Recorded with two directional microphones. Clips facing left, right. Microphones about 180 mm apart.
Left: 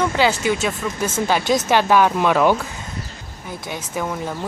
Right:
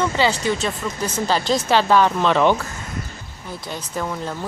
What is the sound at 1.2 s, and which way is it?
Speech, 15° left (ahead or behind).